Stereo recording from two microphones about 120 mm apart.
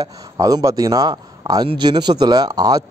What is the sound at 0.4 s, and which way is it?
A man's voice, 30° right (ahead or behind).